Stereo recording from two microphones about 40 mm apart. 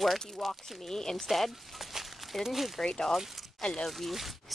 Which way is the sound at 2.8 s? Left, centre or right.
Centre.